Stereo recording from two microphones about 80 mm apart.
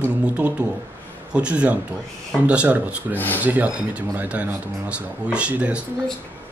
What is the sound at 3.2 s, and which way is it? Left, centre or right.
Speech, left.